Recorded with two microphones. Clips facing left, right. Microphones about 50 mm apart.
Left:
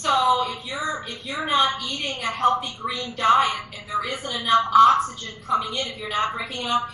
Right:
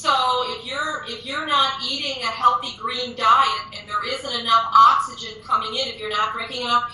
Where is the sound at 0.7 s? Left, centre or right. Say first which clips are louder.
Right 2 dB; centre.